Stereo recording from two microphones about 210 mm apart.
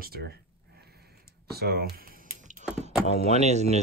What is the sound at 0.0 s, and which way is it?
Speech, 50° right (ahead or behind).